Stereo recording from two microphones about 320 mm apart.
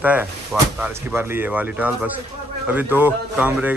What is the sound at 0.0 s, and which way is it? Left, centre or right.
Speech, centre.